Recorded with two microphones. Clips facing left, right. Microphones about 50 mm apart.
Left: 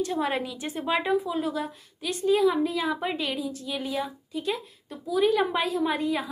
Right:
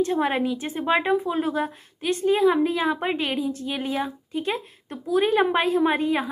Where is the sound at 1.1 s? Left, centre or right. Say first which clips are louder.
Right 3 dB; right.